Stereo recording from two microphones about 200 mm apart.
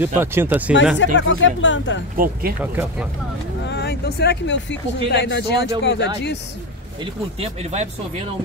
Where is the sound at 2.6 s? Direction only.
5° right (ahead or behind).